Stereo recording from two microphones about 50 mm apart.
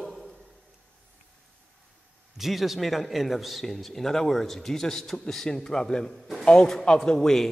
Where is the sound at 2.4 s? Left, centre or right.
Centre.